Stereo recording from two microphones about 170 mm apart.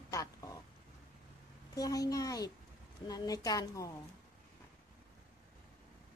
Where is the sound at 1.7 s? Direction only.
20° left (ahead or behind).